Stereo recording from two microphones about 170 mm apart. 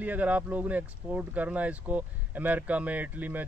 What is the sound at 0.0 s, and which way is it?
Speech, 10° right (ahead or behind).